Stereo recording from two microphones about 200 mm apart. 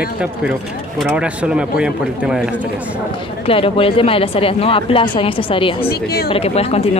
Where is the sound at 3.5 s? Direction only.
25° left (ahead or behind).